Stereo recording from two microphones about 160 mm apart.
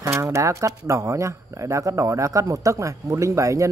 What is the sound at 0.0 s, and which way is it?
Speech, 15° right (ahead or behind).